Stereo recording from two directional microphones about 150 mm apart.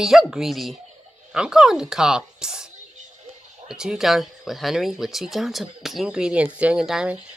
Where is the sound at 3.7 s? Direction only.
5° right (ahead or behind).